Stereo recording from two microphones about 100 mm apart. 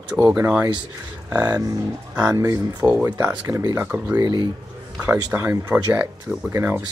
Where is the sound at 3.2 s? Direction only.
30° right (ahead or behind).